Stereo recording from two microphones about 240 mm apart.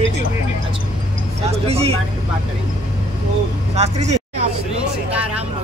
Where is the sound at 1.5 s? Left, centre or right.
Right.